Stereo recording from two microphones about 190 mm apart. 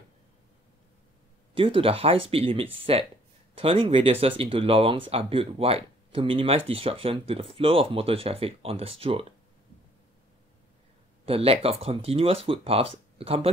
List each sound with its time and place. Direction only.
1.5 s speech: 30° right (ahead or behind)
11.2 s speech: 30° right (ahead or behind)